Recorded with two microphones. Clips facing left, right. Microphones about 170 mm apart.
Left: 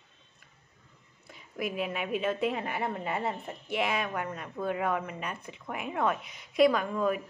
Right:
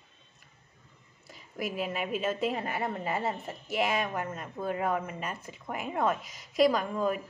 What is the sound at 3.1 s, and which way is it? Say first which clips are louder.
Speech: right 1 dB; centre (ahead or behind).